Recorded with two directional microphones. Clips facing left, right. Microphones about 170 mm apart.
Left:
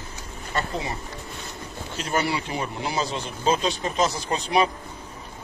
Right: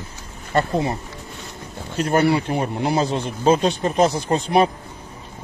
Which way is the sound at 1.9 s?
55° right (ahead or behind).